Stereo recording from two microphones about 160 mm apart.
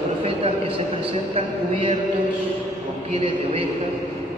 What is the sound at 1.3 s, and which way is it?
Speech, 40° right (ahead or behind).